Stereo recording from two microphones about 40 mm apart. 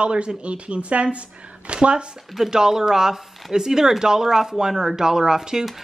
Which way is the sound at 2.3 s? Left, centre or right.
Centre.